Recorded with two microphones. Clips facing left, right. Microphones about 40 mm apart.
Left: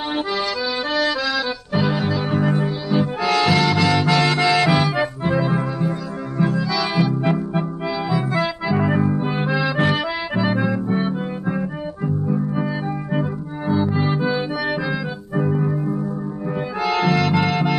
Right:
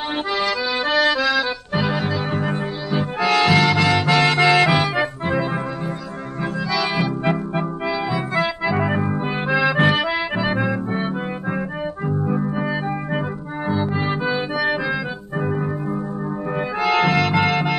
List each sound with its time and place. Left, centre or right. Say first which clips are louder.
0.4 s accordion: right 2 dB; right
6.5 s music: left 1 dB; right
9.9 s accordion: right 2 dB; right
12.3 s music: even; right
15.3 s keyboard: left 3 dB; right
16.8 s music: right 1 dB; right